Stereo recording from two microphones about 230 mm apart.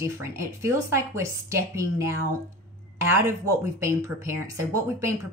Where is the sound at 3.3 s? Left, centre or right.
Centre.